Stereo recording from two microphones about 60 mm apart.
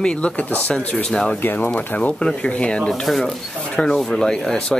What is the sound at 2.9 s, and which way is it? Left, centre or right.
Speech, centre.